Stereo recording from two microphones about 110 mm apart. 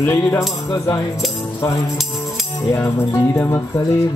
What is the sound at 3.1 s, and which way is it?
Speech, 25° left (ahead or behind).